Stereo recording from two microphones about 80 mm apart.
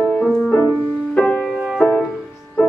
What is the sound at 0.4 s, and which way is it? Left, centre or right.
Music, left.